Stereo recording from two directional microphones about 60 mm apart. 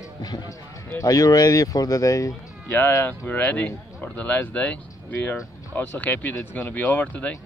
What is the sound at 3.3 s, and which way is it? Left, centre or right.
Speech, left.